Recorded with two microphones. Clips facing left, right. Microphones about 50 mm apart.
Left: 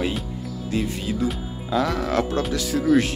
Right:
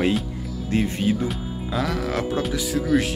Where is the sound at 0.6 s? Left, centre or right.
Right.